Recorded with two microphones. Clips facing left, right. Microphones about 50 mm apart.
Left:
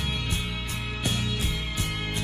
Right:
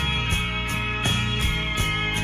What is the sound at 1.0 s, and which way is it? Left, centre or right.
Music, right.